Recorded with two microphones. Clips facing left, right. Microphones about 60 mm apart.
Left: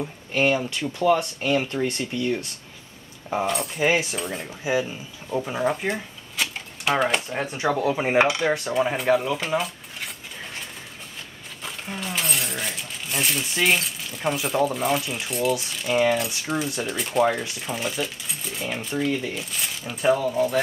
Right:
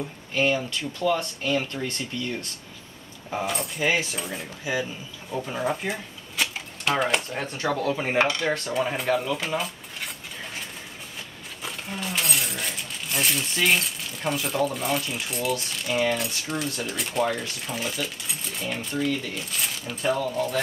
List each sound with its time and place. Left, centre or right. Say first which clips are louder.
0.3 s speech: left 2 dB; centre
3.4 s speech: left 3 dB; centre
3.8 s cutlery: left 3 dB; centre
5.3 s cutlery: left 4 dB; centre
5.6 s typewriter: left 2 dB; centre
7.3 s cutlery: left 3 dB; centre
8.7 s dishes: left 4 dB; centre
11.6 s speech: even; centre